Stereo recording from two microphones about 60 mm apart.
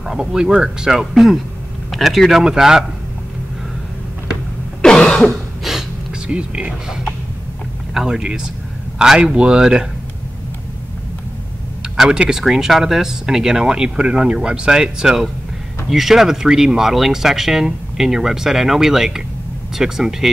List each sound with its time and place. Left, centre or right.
0.0 s speech: centre
4.8 s throat clearing: centre
5.6 s a sound: centre
6.2 s speech: centre
7.9 s speech: centre
12.0 s speech: centre